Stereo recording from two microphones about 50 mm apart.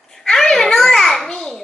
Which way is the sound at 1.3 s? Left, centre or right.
Centre.